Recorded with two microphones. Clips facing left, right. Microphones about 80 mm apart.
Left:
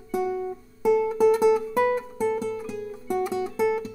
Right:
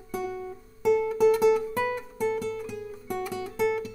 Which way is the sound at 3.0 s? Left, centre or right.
Left.